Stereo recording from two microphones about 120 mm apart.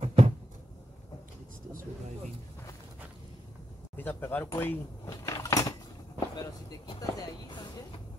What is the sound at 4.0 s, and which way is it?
Speech, 15° left (ahead or behind).